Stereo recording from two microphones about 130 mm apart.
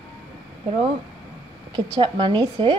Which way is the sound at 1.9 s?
35° right (ahead or behind).